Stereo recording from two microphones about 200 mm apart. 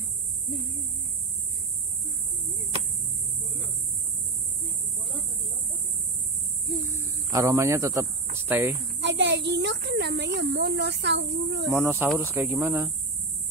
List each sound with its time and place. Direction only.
7.3 s a man's voice: 15° right (ahead or behind)
9.0 s speech: 60° right (ahead or behind)
11.7 s a man's voice: 10° right (ahead or behind)